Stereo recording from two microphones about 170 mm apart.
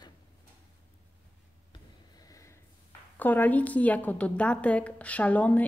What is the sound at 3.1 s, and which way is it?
A woman's voice, 10° left (ahead or behind).